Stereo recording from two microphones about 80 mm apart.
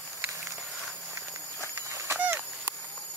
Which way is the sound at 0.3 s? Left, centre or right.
Right.